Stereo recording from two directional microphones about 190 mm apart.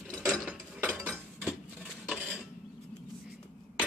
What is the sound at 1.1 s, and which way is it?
Cutlery, 5° right (ahead or behind).